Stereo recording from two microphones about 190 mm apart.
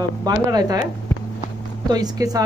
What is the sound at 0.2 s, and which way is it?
Speech, 20° right (ahead or behind).